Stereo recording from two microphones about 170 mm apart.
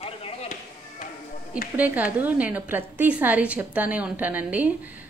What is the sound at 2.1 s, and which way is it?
A woman's voice, 10° right (ahead or behind).